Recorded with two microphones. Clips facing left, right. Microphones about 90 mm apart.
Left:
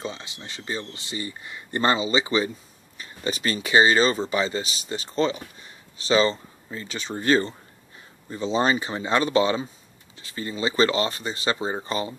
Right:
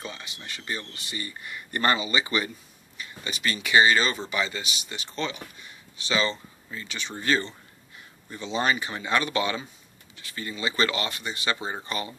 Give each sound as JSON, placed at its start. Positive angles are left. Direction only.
{"t": 0.0, "sound": "speech", "side_deg": 25}
{"t": 3.0, "sound": "speech", "side_deg": 35}